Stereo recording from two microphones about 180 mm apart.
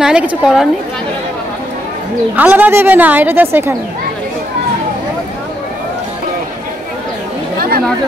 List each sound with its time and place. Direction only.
0.0 s a woman's voice: 5° right (ahead or behind)
2.3 s a woman's voice: 10° right (ahead or behind)